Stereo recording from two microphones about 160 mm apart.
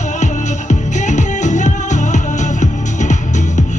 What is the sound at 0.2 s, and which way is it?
Music, 50° left (ahead or behind).